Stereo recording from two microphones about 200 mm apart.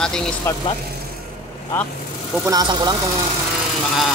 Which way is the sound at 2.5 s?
20° right (ahead or behind).